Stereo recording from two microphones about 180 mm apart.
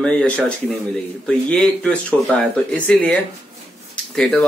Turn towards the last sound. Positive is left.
turn(degrees=5)  # may be behind; listen again after turning